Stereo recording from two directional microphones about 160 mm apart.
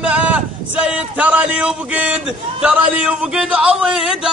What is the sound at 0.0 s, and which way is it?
A man's voice, 5° right (ahead or behind).